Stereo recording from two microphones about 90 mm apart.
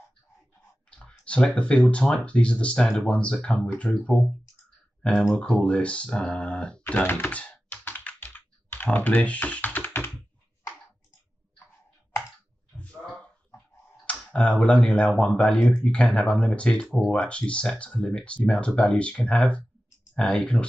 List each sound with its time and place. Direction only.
0.8 s speech: 10° left (ahead or behind)
5.3 s speech: 10° left (ahead or behind)
6.8 s computer keyboard: 25° left (ahead or behind)
12.7 s a sound: 15° left (ahead or behind)
13.0 s dog: 10° left (ahead or behind)
14.2 s speech: 10° left (ahead or behind)